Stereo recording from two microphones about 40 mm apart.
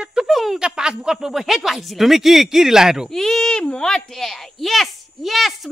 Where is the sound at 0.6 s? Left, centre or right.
Centre.